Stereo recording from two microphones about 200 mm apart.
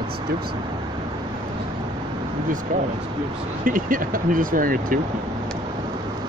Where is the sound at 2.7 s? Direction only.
45° right (ahead or behind).